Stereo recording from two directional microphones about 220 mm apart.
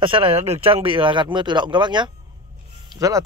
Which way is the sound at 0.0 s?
25° right (ahead or behind).